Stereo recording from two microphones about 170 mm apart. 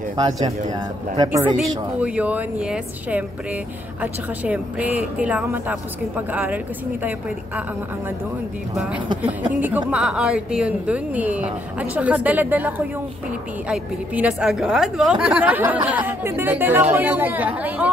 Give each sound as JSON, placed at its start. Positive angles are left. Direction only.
{"t": 0.1, "sound": "speech", "side_deg": -25}
{"t": 2.0, "sound": "a woman's voice", "side_deg": -10}
{"t": 8.7, "sound": "a woman's voice", "side_deg": -5}